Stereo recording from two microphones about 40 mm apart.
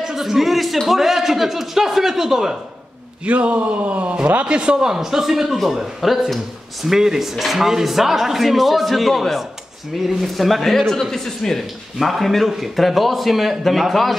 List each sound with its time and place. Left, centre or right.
0.0 s a man's voice: centre
3.3 s a man's voice: right; by 11.6 s centre
12.0 s speech: centre